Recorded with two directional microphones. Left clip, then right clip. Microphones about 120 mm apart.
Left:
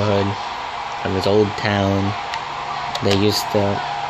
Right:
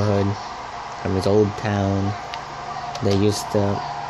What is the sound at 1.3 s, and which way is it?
Speech, 15° left (ahead or behind).